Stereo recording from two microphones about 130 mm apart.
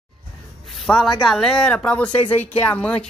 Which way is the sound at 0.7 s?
5° left (ahead or behind).